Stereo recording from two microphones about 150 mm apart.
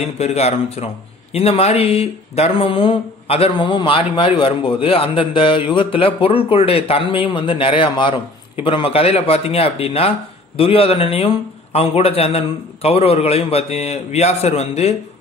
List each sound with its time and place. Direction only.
0.0 s a man's voice: 45° left (ahead or behind)